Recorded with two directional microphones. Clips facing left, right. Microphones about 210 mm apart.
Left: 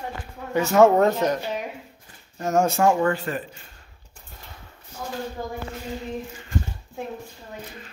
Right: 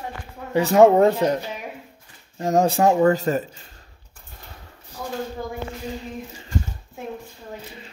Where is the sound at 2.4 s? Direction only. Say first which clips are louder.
Right 2 dB; 35° right (ahead or behind).